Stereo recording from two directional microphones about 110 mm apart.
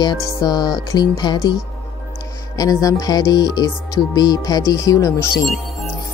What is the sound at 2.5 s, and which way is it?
Speech, 35° left (ahead or behind).